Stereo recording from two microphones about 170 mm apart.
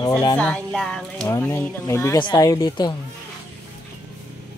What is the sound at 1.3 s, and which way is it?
Speech, 15° left (ahead or behind).